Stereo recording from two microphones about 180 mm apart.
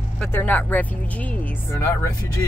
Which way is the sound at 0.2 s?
10° left (ahead or behind).